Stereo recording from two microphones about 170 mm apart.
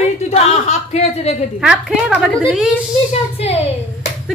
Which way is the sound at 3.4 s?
35° left (ahead or behind).